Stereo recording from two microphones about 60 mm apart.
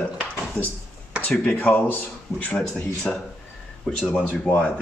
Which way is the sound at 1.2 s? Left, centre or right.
Left.